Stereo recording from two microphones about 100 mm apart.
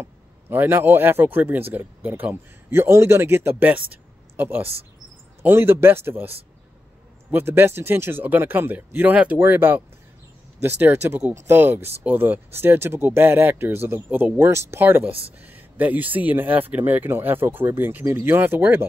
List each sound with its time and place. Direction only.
0.0 s a man's voice: 20° right (ahead or behind)